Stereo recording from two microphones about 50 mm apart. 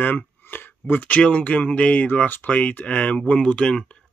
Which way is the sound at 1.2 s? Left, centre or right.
Left.